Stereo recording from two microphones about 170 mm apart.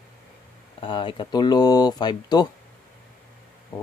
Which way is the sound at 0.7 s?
30° left (ahead or behind).